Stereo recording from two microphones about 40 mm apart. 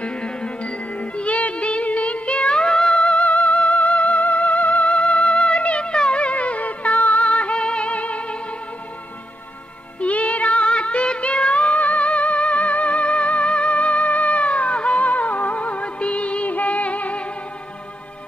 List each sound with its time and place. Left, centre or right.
0.0 s music: left
3.0 s music: left
4.9 s music: left
9.9 s music: left